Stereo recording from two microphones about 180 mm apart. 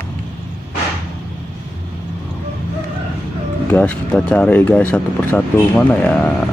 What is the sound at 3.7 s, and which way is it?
Speech, 5° left (ahead or behind).